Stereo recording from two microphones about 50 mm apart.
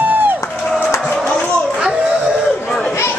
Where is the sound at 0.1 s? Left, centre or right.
Right.